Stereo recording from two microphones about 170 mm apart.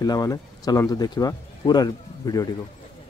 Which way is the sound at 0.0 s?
20° left (ahead or behind).